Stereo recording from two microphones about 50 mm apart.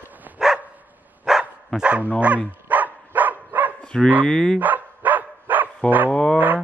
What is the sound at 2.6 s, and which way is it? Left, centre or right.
Dog, right.